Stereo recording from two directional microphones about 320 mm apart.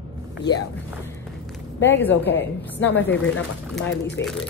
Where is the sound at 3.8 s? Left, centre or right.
Left.